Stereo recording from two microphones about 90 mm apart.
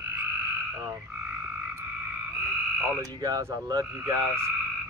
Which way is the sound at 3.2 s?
40° right (ahead or behind).